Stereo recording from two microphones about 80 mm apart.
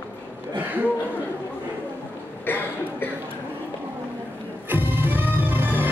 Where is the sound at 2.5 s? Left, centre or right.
Left.